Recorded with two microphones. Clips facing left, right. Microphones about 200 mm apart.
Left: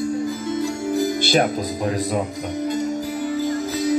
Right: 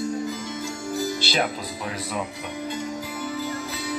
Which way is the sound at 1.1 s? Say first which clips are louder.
Left 7 dB; 50° left (ahead or behind).